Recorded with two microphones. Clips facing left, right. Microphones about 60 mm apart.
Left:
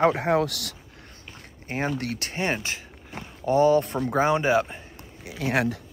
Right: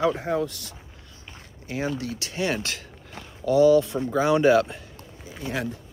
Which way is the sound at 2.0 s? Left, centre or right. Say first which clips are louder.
Even; left.